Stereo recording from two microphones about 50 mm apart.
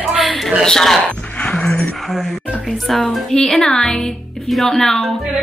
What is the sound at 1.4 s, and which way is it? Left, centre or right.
Music, centre.